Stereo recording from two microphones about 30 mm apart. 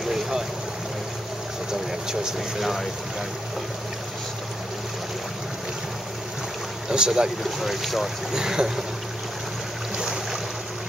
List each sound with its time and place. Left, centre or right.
1.7 s speech: right
6.9 s speech: right
7.4 s speech: centre
8.3 s speech: centre